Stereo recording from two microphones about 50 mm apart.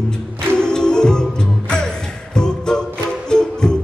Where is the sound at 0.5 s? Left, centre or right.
Centre.